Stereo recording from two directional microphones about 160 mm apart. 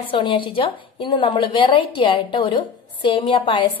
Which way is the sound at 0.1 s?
30° left (ahead or behind).